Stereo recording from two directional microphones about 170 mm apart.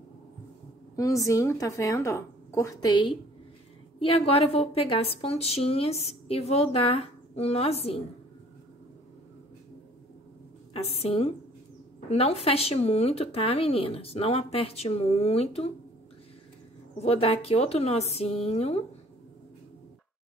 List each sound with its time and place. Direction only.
0.9 s a woman's voice: 20° left (ahead or behind); by 8.0 s 35° left (ahead or behind)
10.7 s a woman's voice: 35° left (ahead or behind)
17.0 s a woman's voice: 35° left (ahead or behind)